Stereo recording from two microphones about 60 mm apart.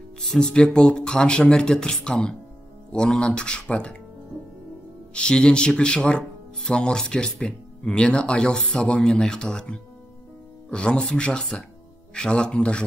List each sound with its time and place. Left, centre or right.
0.2 s speech: centre
5.1 s speech: centre